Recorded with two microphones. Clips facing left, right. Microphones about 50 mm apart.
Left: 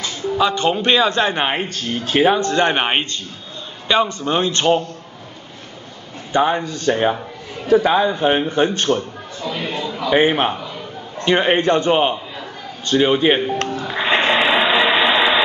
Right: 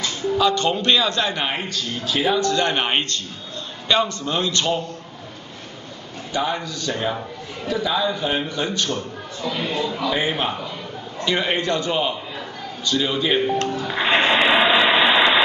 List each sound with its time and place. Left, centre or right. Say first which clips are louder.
0.4 s a man's voice: left 3 dB; centre
6.3 s a man's voice: left 7 dB; left
10.1 s a man's voice: left 7 dB; left
13.8 s a sound: left 2 dB; centre